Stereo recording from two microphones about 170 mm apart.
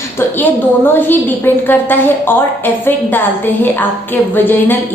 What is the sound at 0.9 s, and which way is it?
A woman's voice, 10° left (ahead or behind).